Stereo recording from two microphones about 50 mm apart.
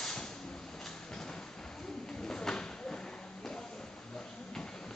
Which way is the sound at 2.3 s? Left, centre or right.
Centre.